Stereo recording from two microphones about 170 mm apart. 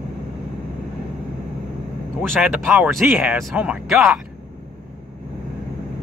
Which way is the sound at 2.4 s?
5° right (ahead or behind).